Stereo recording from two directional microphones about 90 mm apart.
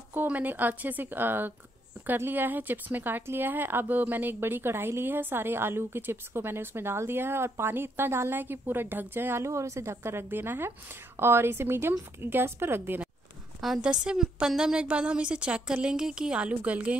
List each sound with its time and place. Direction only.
0.1 s a woman's voice: 20° right (ahead or behind)
13.8 s a woman's voice: 10° right (ahead or behind)